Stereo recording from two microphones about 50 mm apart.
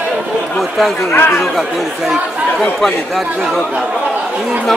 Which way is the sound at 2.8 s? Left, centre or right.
Centre.